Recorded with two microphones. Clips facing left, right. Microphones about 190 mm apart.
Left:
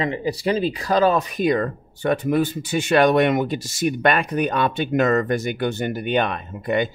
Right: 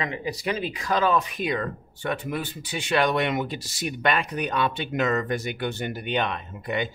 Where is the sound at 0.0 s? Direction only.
30° left (ahead or behind).